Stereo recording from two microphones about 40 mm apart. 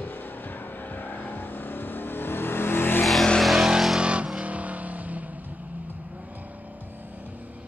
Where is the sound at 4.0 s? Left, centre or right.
Right.